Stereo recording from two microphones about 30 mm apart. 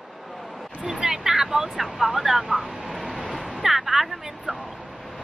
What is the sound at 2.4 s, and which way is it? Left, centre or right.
Vehicle, centre.